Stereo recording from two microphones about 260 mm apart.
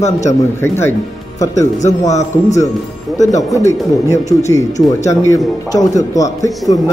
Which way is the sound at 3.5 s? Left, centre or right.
Centre.